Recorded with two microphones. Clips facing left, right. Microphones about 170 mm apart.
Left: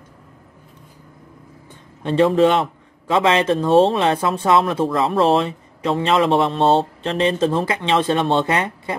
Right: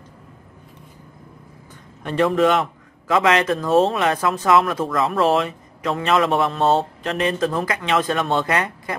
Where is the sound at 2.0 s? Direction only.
30° left (ahead or behind).